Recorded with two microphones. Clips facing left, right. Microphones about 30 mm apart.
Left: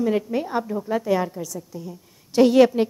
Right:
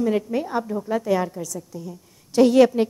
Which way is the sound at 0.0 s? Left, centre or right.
Centre.